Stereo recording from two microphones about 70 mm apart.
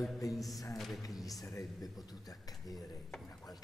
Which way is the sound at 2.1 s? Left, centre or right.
Left.